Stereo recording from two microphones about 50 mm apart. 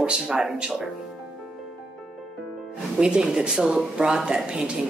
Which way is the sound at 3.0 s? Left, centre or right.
Centre.